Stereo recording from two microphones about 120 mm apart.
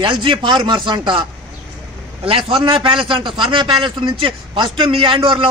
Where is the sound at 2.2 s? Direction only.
45° right (ahead or behind).